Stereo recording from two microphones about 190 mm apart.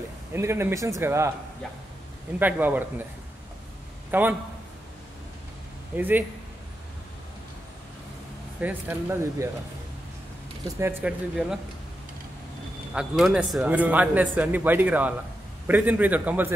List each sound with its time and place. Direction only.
0.3 s speech: 15° right (ahead or behind)
2.3 s speech: 10° right (ahead or behind)
4.1 s a man's voice: 10° right (ahead or behind)
5.9 s speech: 10° right (ahead or behind)
8.5 s speech: 10° right (ahead or behind)
10.8 s speech: 10° right (ahead or behind)
12.9 s speech: 5° right (ahead or behind)